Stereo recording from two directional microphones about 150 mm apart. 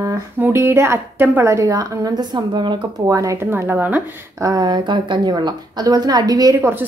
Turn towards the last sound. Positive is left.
turn(degrees=-15)  # may be behind; listen again after turning